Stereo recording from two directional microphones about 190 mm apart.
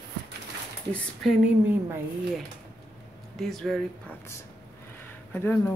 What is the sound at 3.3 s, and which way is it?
Speech, centre (ahead or behind).